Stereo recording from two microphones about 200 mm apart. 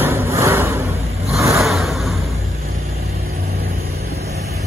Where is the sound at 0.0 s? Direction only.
15° right (ahead or behind).